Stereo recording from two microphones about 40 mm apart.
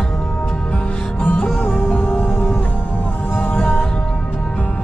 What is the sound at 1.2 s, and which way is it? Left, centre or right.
Music, left.